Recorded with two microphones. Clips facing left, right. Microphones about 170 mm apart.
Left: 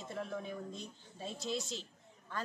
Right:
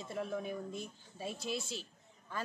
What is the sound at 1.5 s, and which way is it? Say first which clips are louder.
Speech: left 1 dB; 20° left (ahead or behind).